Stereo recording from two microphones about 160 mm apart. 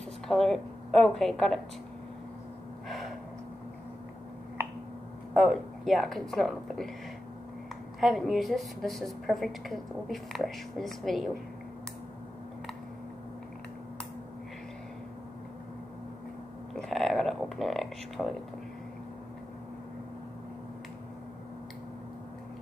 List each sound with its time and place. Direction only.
0.3 s a woman's voice: centre (ahead or behind)
2.9 s gasp: centre (ahead or behind)
5.3 s a woman's voice: centre (ahead or behind)
8.0 s a woman's voice: centre (ahead or behind)
16.7 s a sound: centre (ahead or behind)